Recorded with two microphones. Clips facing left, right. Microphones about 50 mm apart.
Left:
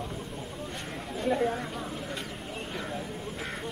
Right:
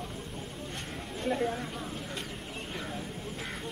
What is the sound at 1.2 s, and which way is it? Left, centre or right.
Speech, centre.